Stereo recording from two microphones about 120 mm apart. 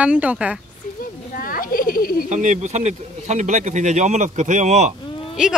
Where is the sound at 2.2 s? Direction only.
85° right.